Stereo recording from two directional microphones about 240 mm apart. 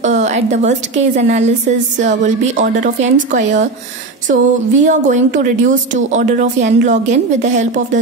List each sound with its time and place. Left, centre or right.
0.0 s a woman's voice: right